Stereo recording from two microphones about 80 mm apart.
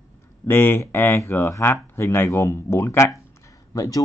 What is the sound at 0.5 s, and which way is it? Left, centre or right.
Speech, left.